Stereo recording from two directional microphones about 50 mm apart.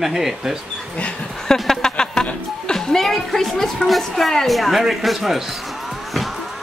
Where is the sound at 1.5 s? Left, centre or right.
Centre.